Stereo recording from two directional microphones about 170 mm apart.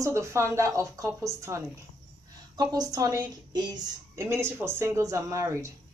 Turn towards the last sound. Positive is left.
turn(degrees=-15)  # may be behind; listen again after turning